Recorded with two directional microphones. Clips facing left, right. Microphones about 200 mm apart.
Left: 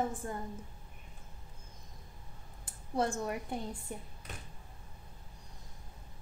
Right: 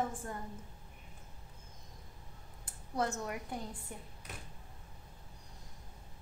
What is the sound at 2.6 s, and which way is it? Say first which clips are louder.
Speech: left 3 dB; 30° left (ahead or behind).